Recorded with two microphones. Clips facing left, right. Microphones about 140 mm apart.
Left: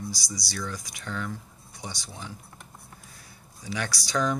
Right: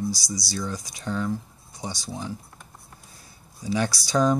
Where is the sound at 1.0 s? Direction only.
30° right (ahead or behind).